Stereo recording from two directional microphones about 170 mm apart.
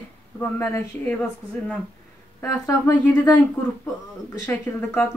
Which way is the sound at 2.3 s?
15° left (ahead or behind).